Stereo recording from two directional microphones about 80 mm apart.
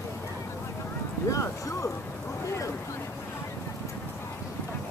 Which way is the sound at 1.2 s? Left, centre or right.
Left.